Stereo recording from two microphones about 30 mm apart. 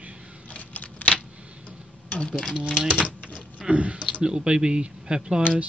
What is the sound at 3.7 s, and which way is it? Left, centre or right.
Speech, right.